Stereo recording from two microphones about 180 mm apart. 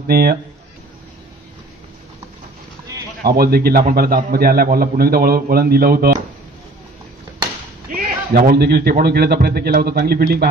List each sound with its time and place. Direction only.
0.0 s a man's voice: 60° right (ahead or behind)
3.3 s a man's voice: 60° right (ahead or behind)
7.9 s a man's voice: 55° right (ahead or behind)